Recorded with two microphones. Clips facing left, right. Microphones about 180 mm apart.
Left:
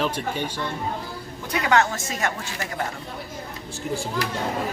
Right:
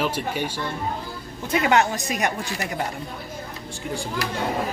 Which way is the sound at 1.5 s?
20° right (ahead or behind).